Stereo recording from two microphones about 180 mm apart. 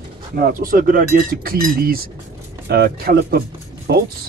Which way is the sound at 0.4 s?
50° right (ahead or behind).